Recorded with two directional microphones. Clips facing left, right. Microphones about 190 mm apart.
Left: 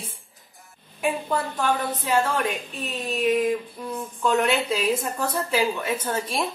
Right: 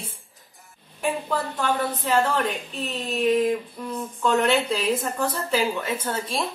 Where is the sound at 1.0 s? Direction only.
10° left (ahead or behind).